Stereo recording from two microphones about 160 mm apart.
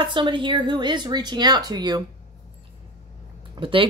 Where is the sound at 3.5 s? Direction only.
35° right (ahead or behind).